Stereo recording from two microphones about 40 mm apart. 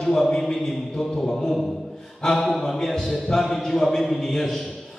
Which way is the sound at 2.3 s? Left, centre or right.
Centre.